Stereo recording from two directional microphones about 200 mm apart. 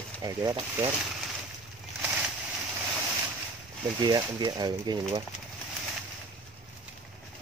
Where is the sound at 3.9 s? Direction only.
20° right (ahead or behind).